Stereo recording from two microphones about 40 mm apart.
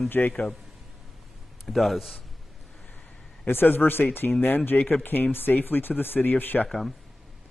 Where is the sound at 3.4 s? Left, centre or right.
Left.